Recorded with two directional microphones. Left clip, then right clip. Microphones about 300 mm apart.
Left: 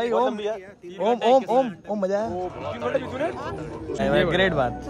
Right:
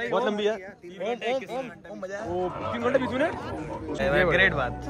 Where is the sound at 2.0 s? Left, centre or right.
Centre.